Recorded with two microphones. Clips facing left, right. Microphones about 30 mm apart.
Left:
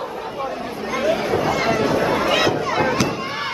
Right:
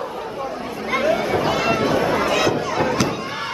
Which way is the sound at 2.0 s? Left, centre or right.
Centre.